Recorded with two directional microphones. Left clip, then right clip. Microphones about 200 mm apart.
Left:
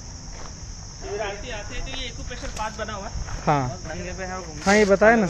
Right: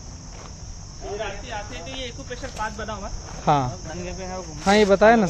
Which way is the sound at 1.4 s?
45° right (ahead or behind).